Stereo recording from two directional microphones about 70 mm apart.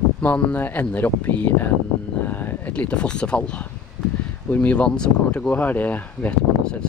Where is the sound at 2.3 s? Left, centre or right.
Left.